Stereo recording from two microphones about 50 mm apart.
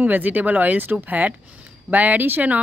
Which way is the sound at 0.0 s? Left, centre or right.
Right.